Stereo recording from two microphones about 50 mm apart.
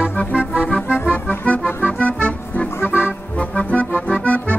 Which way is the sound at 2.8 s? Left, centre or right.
Left.